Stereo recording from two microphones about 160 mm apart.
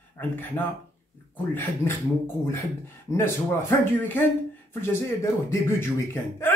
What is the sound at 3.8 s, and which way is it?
Speech, 10° left (ahead or behind).